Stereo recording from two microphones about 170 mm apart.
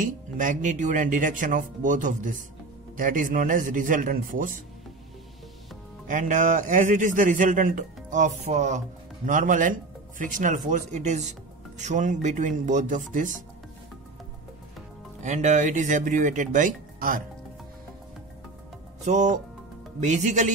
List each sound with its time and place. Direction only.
0.0 s a man's voice: 50° right (ahead or behind)
6.0 s a man's voice: 50° right (ahead or behind)
15.2 s a man's voice: 45° right (ahead or behind)
19.0 s a man's voice: 45° right (ahead or behind)